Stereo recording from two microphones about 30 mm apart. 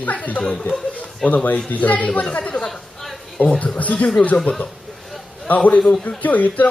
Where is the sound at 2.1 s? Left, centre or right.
Left.